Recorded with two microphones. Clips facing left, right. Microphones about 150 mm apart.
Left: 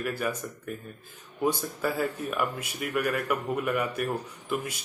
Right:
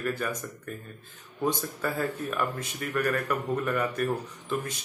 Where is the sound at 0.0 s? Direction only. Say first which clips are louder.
Left 1 dB; 10° left (ahead or behind).